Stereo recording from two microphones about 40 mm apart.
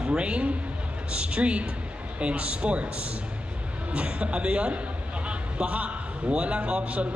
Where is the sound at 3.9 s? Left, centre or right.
Right.